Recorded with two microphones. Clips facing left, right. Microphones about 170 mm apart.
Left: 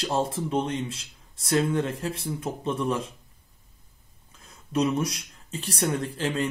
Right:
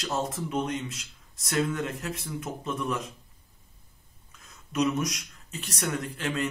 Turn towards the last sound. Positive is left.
turn(degrees=30)  # may be behind; listen again after turning